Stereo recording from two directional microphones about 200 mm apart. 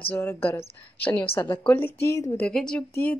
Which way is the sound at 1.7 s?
10° left (ahead or behind).